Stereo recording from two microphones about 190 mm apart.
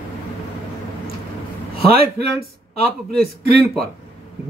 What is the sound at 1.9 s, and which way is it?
A man's voice, 55° right (ahead or behind).